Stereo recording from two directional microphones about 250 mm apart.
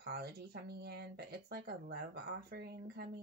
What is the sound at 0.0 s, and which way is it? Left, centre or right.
Speech, right.